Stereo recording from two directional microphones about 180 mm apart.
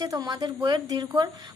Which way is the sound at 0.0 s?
20° right (ahead or behind).